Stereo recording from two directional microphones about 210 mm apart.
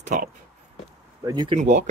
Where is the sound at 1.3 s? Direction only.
20° right (ahead or behind).